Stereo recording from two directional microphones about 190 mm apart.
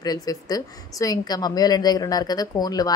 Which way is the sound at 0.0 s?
20° left (ahead or behind).